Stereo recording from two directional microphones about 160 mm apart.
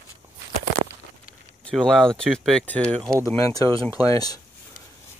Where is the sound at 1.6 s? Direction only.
5° left (ahead or behind).